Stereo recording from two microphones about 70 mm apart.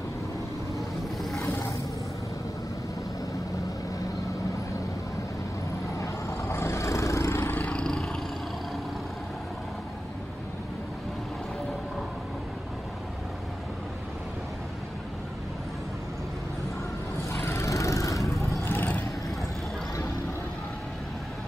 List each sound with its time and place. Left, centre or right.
1.4 s vehicle: left
6.5 s vehicle: left
7.5 s a sound: left
7.8 s roar: centre
17.3 s vehicle: left
18.7 s vehicle: left